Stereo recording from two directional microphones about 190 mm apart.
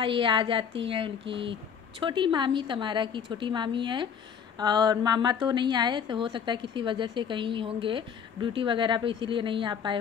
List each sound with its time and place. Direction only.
0.0 s a woman's voice: 25° right (ahead or behind)